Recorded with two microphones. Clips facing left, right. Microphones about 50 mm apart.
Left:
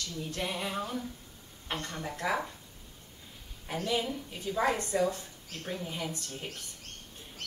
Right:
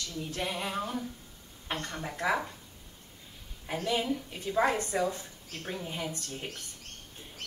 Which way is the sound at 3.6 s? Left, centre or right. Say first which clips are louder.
Right 1 dB; centre.